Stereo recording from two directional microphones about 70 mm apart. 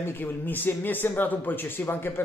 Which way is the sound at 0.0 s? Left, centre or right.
Left.